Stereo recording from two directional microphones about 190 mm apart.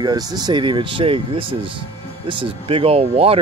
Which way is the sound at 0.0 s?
20° right (ahead or behind).